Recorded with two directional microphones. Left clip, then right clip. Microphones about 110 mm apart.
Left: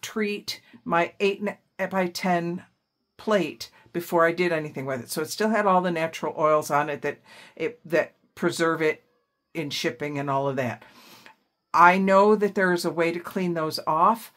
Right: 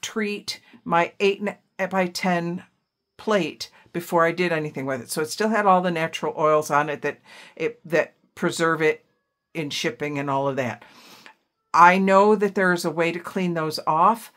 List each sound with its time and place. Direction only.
0.0 s speech: 30° right (ahead or behind)